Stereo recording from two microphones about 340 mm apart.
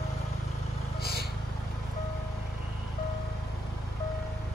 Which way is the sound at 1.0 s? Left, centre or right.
Left.